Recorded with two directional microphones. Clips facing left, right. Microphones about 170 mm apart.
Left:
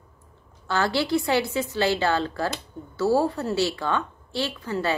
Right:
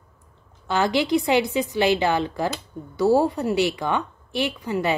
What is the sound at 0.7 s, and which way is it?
A woman's voice, 15° right (ahead or behind).